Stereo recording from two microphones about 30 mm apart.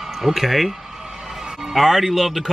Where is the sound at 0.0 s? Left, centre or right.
Centre.